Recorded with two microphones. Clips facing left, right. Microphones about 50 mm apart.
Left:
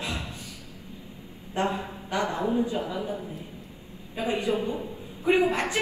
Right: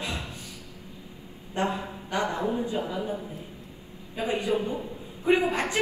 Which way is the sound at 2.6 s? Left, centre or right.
Right.